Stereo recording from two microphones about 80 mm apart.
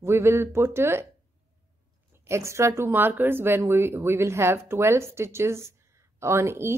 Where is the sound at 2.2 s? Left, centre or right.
Right.